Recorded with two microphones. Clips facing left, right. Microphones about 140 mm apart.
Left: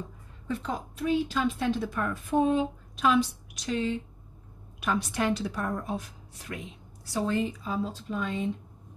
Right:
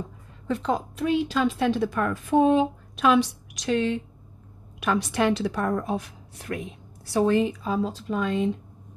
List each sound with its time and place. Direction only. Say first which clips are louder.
0.5 s a woman's voice: right 7 dB; 90° right; by 6.7 s 55° right (ahead or behind)
7.2 s a woman's voice: right 7 dB; 70° right (ahead or behind); by 8.5 s 85° right